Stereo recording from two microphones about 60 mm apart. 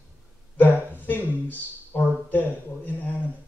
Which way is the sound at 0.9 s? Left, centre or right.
Left.